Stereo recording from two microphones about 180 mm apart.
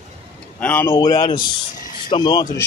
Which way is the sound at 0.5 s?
10° left (ahead or behind).